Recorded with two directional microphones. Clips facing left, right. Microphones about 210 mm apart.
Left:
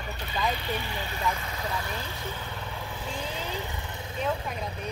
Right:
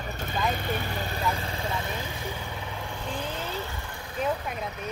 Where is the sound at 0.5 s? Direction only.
50° right (ahead or behind).